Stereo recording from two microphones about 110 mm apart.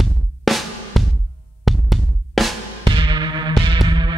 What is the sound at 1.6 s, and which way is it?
Drum, centre (ahead or behind).